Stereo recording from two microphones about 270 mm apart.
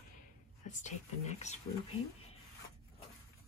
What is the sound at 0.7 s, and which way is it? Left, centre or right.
Speech, left.